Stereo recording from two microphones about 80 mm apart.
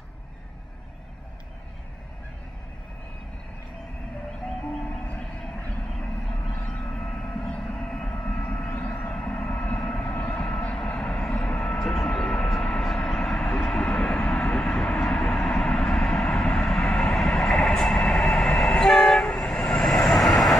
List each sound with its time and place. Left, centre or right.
4.8 s music: centre
5.4 s vehicle: centre